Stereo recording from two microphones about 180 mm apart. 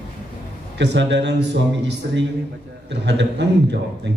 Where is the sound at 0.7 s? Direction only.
80° right.